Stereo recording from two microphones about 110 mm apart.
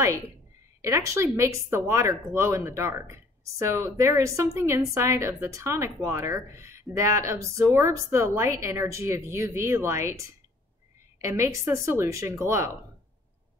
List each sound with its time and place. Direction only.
0.8 s speech: 25° right (ahead or behind)